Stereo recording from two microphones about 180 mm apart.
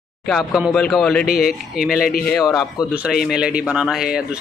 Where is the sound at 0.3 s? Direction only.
Centre (ahead or behind).